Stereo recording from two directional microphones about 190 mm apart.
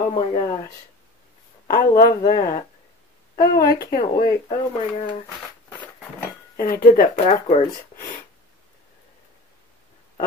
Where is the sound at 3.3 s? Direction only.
50° left (ahead or behind).